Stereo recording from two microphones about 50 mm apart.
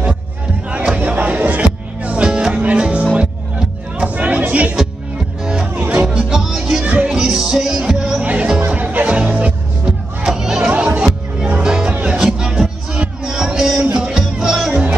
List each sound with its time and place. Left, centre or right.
0.9 s music: right
4.1 s chatter: right
5.8 s music: right
6.8 s music: right
7.1 s music: centre
8.2 s music: right
10.2 s a sound: centre
11.0 s music: right